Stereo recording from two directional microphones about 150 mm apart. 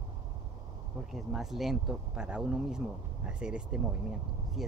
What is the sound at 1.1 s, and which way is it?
Speech, centre (ahead or behind).